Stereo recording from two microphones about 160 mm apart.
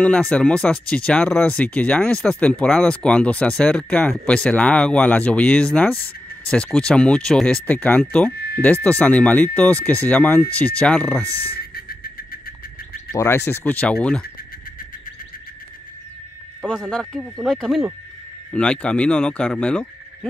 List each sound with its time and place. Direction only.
0.0 s speech: 10° left (ahead or behind)
11.2 s a sound: 75° left (ahead or behind)
13.1 s speech: 15° left (ahead or behind)
16.6 s speech: 5° left (ahead or behind)